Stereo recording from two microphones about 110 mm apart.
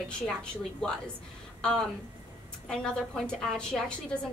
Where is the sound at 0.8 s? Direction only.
5° left (ahead or behind).